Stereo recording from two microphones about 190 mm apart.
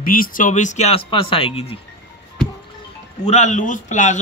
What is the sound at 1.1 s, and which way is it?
Speech, 25° left (ahead or behind).